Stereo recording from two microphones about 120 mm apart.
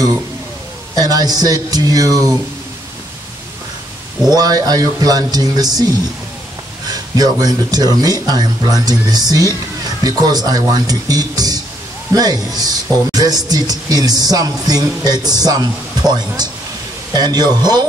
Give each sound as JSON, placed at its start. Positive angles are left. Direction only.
{"t": 0.9, "sound": "speech", "side_deg": -30}
{"t": 4.3, "sound": "speech", "side_deg": -30}
{"t": 6.9, "sound": "speech", "side_deg": -30}